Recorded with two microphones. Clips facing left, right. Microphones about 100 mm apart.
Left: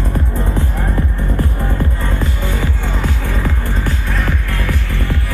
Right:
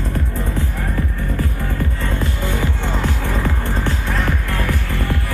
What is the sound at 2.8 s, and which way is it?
Music, 20° right (ahead or behind).